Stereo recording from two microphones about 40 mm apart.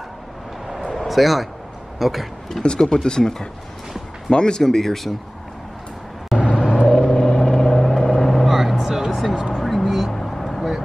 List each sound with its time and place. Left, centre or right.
0.9 s a man's voice: centre
2.6 s speech: centre
6.3 s vehicle: right
6.7 s vehicle: left
7.3 s vehicle: centre
9.6 s vehicle: centre
9.8 s vehicle: centre
10.1 s vehicle: centre